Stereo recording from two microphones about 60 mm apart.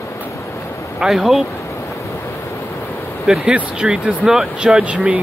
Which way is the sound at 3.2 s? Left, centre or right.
Centre.